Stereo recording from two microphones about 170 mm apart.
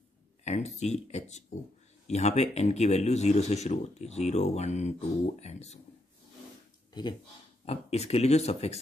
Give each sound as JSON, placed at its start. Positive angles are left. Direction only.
{"t": 0.4, "sound": "speech", "side_deg": 40}
{"t": 6.9, "sound": "speech", "side_deg": 25}
{"t": 7.6, "sound": "speech", "side_deg": 35}